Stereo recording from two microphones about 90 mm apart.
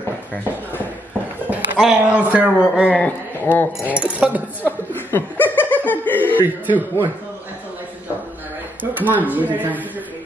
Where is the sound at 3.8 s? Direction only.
15° right (ahead or behind).